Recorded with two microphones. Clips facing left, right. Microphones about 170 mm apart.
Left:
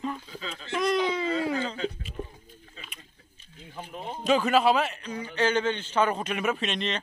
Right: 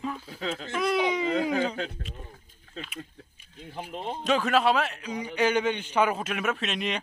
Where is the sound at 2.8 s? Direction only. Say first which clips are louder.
Right 10 dB; 75° right (ahead or behind).